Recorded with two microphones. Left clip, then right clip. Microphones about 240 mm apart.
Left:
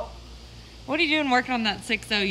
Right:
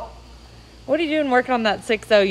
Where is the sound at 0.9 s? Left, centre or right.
Centre.